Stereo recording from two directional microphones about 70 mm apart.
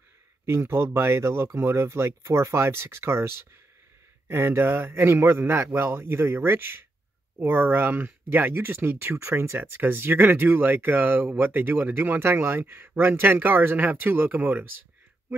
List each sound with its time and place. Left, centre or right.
0.5 s speech: right